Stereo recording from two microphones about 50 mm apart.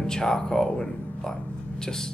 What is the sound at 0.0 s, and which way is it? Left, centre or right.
Speech, centre.